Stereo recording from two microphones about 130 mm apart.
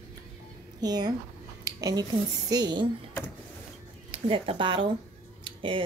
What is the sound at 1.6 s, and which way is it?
Dishes, 25° right (ahead or behind).